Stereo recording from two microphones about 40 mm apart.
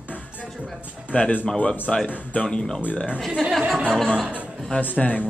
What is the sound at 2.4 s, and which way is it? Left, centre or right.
Speech, centre.